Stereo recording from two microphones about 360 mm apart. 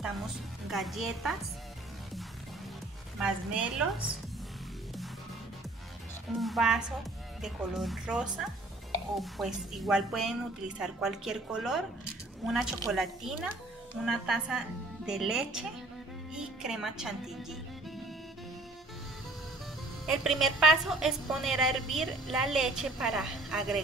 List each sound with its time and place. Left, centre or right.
0.7 s a woman's voice: centre
3.2 s a woman's voice: centre
6.3 s a woman's voice: centre
20.1 s a woman's voice: centre